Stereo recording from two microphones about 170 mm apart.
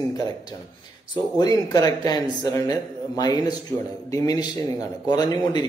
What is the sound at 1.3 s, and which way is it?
Speech, 20° left (ahead or behind).